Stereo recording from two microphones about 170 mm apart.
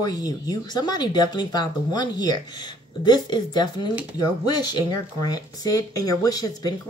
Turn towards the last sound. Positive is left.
turn(degrees=20)  # may be behind; listen again after turning